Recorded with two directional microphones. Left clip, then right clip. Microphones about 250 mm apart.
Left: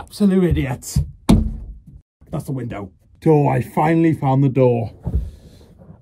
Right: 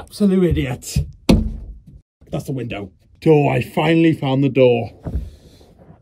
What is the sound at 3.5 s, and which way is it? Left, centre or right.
Speech, left.